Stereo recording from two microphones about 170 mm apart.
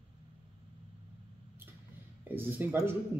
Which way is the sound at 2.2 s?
10° right (ahead or behind).